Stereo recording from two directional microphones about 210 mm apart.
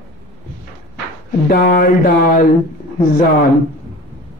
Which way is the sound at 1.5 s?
45° left (ahead or behind).